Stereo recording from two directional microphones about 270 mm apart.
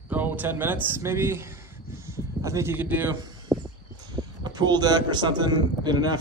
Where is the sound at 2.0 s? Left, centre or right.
Centre.